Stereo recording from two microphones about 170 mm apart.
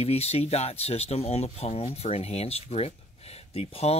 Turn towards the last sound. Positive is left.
turn(degrees=35)  # may be behind; listen again after turning